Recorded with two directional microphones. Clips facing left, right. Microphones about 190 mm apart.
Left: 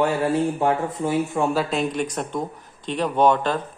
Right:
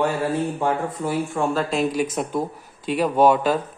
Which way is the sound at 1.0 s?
20° left (ahead or behind).